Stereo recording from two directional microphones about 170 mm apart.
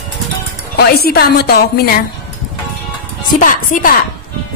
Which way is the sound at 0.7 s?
65° left (ahead or behind).